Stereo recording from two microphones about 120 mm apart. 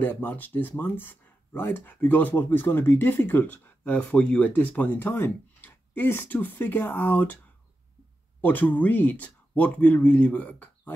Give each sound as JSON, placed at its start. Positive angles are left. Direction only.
{"t": 0.0, "sound": "speech", "side_deg": 15}
{"t": 8.4, "sound": "speech", "side_deg": 15}